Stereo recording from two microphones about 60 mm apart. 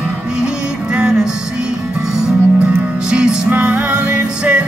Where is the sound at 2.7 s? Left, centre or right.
Centre.